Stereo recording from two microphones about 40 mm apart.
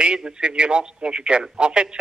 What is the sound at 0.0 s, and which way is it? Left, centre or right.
A man's voice, right.